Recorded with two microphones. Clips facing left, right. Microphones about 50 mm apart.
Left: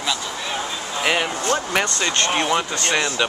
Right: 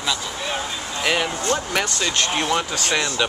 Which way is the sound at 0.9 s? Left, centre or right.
Centre.